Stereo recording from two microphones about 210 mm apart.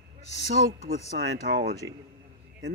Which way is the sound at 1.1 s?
60° right (ahead or behind).